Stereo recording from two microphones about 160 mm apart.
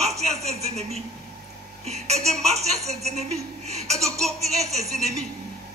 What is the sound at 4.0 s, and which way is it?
Baby laughter, centre (ahead or behind).